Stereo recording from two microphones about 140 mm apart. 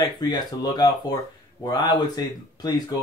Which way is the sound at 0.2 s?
30° left (ahead or behind).